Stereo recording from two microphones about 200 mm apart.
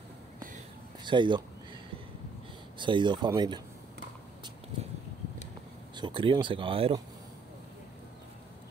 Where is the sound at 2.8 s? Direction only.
25° right (ahead or behind).